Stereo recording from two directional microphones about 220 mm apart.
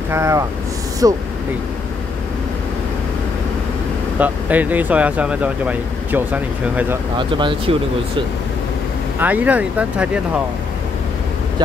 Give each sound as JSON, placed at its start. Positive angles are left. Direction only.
{"t": 0.1, "sound": "speech", "side_deg": -15}
{"t": 4.2, "sound": "speech", "side_deg": -5}
{"t": 7.2, "sound": "speech", "side_deg": -20}
{"t": 9.2, "sound": "speech", "side_deg": -5}